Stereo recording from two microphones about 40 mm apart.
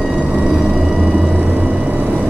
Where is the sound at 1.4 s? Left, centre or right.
Right.